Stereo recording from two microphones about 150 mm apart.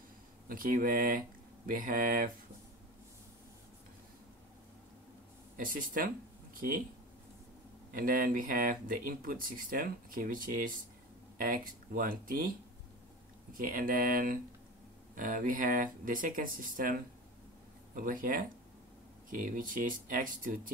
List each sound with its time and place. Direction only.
0.5 s speech: 65° right (ahead or behind)
5.6 s speech: 65° right (ahead or behind)
7.9 s speech: 70° right (ahead or behind)